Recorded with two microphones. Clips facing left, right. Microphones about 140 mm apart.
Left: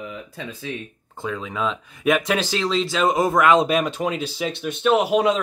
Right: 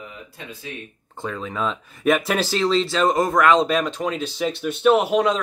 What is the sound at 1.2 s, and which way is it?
Speech, centre (ahead or behind).